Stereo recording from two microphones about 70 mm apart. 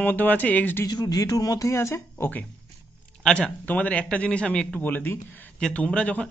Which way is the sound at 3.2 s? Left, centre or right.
Centre.